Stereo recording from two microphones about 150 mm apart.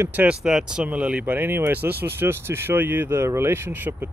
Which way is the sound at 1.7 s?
90° right.